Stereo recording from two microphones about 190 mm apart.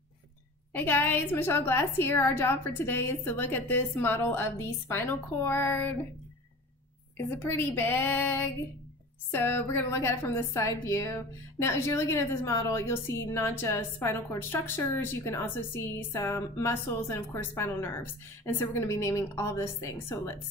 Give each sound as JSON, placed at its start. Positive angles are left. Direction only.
{"t": 0.7, "sound": "a woman's voice", "side_deg": 10}
{"t": 7.2, "sound": "a woman's voice", "side_deg": 10}